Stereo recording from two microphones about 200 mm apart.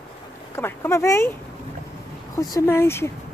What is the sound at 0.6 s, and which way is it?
Speech, 10° left (ahead or behind).